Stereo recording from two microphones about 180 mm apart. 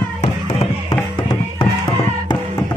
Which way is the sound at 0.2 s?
30° left (ahead or behind).